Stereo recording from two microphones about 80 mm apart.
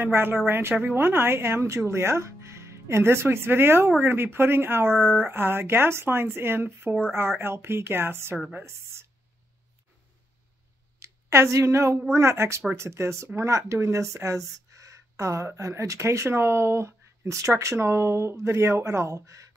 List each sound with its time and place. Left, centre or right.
0.0 s speech: right
11.0 s a woman's voice: right